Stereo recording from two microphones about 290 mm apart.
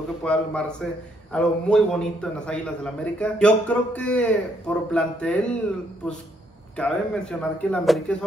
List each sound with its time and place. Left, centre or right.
0.2 s a man's voice: centre
6.8 s a man's voice: centre